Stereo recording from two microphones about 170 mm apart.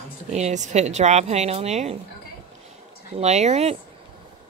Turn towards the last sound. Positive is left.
turn(degrees=-40)  # may be behind; listen again after turning